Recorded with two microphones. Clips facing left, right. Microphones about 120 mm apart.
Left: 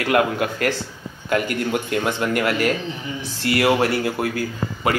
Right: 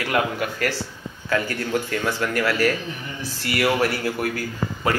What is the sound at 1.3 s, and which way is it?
A man's voice, 20° left (ahead or behind).